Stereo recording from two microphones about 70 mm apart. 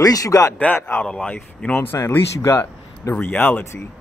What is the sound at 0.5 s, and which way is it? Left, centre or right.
Speech, left.